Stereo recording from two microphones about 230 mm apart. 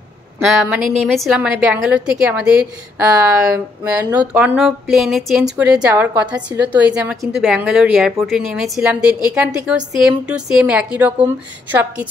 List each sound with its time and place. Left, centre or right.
0.4 s a woman's voice: centre